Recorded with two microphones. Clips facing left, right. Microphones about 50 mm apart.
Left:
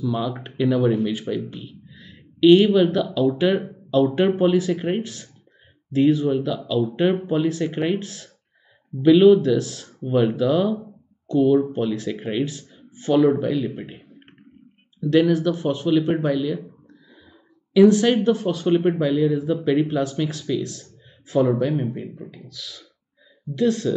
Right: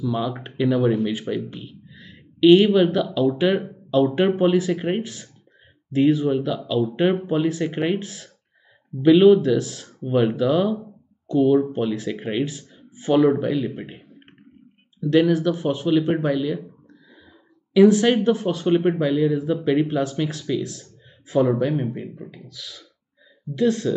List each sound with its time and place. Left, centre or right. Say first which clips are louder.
0.0 s speech: even; centre